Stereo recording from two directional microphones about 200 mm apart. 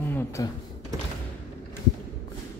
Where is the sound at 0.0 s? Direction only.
10° left (ahead or behind).